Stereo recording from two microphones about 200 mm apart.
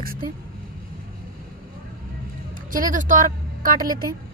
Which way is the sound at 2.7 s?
40° right (ahead or behind).